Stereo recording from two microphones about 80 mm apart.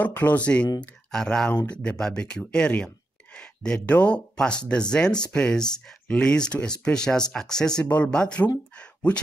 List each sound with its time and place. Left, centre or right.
0.0 s speech: left
1.1 s speech: centre
8.7 s a sound: centre